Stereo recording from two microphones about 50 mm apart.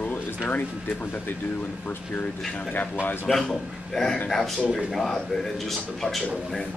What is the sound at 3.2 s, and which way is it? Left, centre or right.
Speech, centre.